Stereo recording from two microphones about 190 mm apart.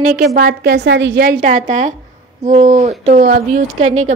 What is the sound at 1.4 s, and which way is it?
A woman's voice, 40° right (ahead or behind).